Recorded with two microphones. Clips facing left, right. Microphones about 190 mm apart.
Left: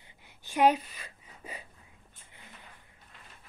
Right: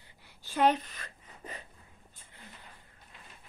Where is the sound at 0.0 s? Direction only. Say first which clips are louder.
Left 1 dB; 20° left (ahead or behind).